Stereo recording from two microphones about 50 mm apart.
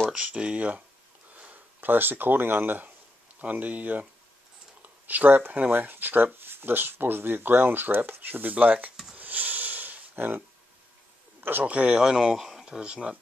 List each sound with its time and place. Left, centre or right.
0.1 s speech: centre
1.5 s speech: right
3.3 s speech: right
9.1 s a sound: right
11.6 s speech: right
12.0 s speech: centre